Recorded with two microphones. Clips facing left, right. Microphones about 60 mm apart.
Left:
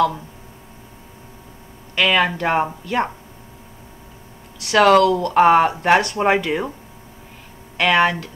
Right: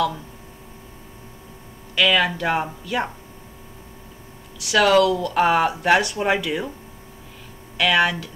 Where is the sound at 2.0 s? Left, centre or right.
Left.